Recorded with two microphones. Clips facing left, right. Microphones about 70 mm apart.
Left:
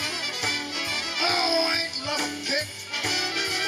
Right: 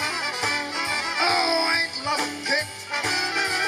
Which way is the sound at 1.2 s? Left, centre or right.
Right.